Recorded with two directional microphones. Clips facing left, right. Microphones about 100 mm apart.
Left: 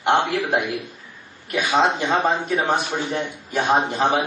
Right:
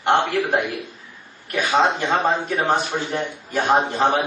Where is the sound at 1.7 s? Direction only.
15° left (ahead or behind).